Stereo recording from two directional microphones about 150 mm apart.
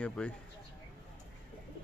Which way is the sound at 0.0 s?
10° left (ahead or behind).